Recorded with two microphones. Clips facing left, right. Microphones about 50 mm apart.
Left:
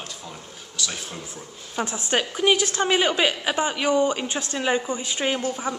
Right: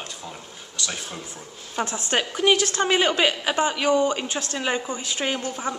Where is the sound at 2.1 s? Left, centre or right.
Centre.